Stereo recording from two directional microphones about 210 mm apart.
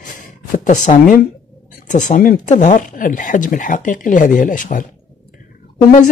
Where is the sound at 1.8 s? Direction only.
35° left (ahead or behind).